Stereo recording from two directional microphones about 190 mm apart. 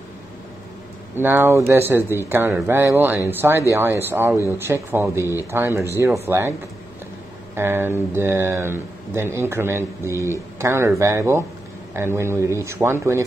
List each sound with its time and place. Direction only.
1.1 s speech: 10° right (ahead or behind)
5.2 s speech: 15° left (ahead or behind)
5.5 s speech: 15° right (ahead or behind)
7.5 s speech: 10° right (ahead or behind)